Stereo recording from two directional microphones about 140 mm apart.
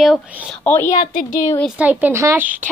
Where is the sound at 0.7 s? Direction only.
15° left (ahead or behind).